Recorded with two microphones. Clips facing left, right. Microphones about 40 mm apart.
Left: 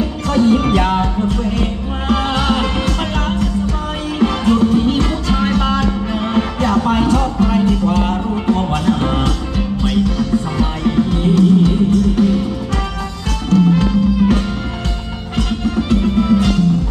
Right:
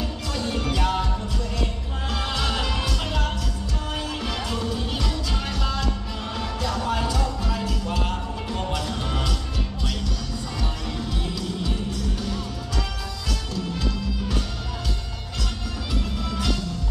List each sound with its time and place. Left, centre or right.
0.3 s music: left
4.2 s music: left
13.5 s music: left